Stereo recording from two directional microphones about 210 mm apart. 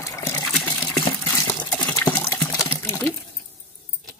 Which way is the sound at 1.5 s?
10° left (ahead or behind).